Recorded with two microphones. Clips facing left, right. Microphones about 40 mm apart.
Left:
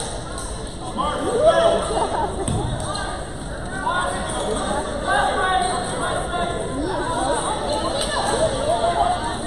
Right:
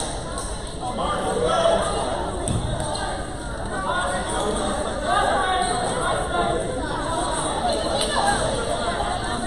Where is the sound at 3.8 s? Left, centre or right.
Centre.